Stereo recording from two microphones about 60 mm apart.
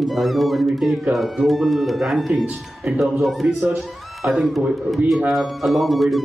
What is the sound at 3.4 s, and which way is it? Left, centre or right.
Speech, right.